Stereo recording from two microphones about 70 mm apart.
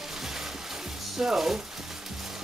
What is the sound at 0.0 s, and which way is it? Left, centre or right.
Music, centre.